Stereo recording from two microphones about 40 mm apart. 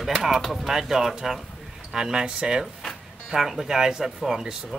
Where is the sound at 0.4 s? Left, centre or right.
Centre.